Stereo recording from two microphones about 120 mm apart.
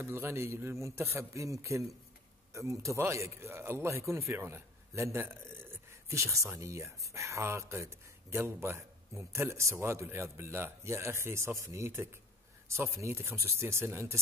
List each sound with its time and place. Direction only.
0.0 s a man's voice: 20° right (ahead or behind)